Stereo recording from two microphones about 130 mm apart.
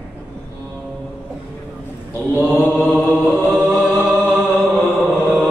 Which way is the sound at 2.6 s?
15° left (ahead or behind).